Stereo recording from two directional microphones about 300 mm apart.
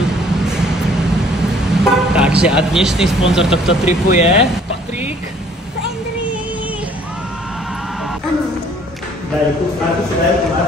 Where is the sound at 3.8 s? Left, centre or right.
Left.